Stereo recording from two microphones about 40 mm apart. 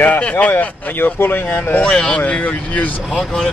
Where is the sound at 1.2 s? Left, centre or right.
Left.